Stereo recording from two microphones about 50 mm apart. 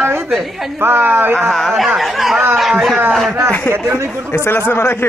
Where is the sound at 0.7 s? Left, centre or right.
Right.